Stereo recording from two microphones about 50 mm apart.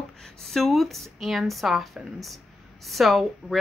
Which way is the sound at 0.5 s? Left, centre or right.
Centre.